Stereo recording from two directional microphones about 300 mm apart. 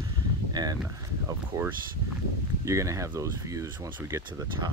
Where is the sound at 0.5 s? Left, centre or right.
Centre.